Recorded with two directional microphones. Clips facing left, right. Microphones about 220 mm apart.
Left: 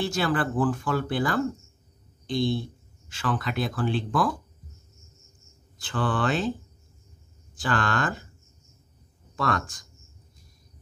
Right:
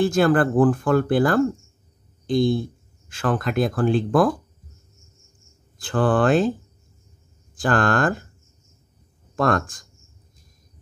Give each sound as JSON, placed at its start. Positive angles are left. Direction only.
{"t": 0.0, "sound": "speech", "side_deg": -50}
{"t": 5.8, "sound": "speech", "side_deg": -50}
{"t": 7.5, "sound": "speech", "side_deg": -50}
{"t": 9.3, "sound": "speech", "side_deg": -45}